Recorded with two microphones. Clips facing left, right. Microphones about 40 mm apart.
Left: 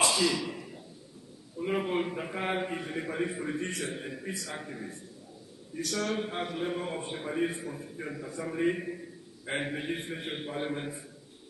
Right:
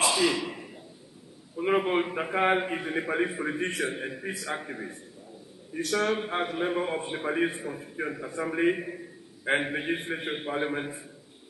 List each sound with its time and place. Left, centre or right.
0.1 s a sound: right
2.3 s a man's voice: right
7.2 s a man's voice: right
7.5 s a man's voice: right
8.7 s a man's voice: centre